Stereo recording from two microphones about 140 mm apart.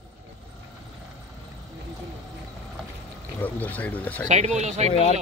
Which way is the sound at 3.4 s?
10° left (ahead or behind).